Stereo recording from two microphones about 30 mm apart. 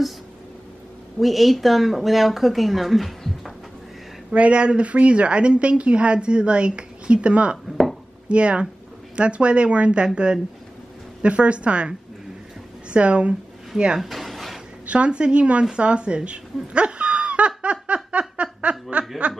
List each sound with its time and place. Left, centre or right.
1.2 s speech: centre
4.3 s a woman's voice: right
11.2 s a woman's voice: right
12.9 s speech: right
14.0 s a sound: centre
14.9 s a woman's voice: right
17.6 s a sound: right